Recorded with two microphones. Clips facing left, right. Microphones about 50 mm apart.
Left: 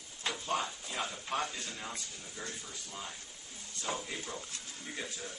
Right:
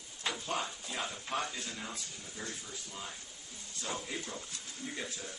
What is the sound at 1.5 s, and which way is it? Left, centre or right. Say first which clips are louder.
Speech: right 1 dB; centre.